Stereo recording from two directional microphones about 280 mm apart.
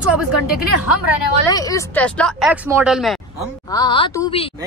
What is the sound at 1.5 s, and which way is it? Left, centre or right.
Speech, centre.